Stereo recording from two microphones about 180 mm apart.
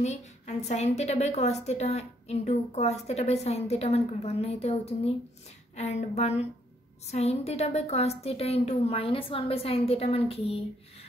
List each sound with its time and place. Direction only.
0.0 s a woman's voice: 40° left (ahead or behind)